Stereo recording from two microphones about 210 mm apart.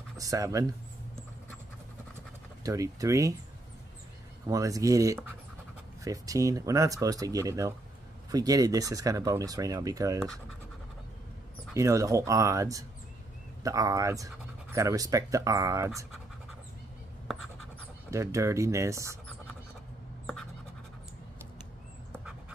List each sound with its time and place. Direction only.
0.2 s speech: 15° right (ahead or behind)
2.6 s speech: 15° right (ahead or behind)
4.5 s speech: 15° right (ahead or behind)
11.7 s speech: 15° right (ahead or behind)
18.1 s speech: 15° right (ahead or behind)